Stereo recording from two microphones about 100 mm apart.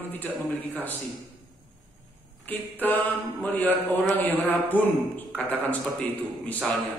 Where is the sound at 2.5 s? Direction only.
20° left (ahead or behind).